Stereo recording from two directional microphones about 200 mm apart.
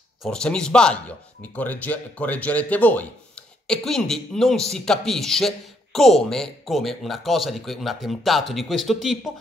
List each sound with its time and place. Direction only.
0.2 s a man's voice: 5° left (ahead or behind)